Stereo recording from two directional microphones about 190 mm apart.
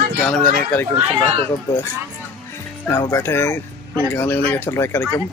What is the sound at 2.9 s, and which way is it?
Speech, 15° left (ahead or behind).